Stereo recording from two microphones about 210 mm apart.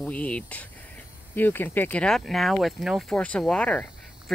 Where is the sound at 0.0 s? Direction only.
5° left (ahead or behind).